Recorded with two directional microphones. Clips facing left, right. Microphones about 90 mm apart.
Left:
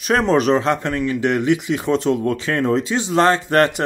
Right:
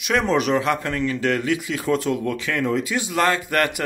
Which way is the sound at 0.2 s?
35° left (ahead or behind).